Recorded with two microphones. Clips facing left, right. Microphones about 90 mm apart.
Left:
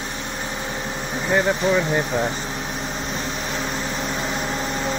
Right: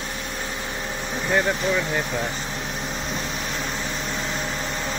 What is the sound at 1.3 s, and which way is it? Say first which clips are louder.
Speech: left 3 dB; 10° left (ahead or behind).